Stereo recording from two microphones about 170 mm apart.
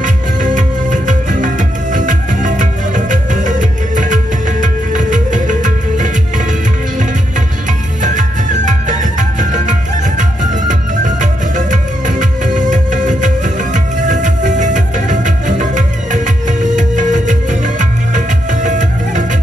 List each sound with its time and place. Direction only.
0.0 s music: 50° right (ahead or behind)
8.0 s music: 45° right (ahead or behind)